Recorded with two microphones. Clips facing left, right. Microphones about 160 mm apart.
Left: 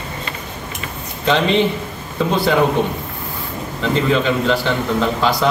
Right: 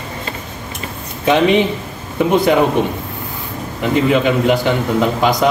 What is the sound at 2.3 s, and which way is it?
Speech, 20° right (ahead or behind).